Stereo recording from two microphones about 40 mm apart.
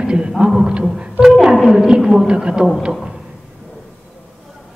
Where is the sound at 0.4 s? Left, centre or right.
Centre.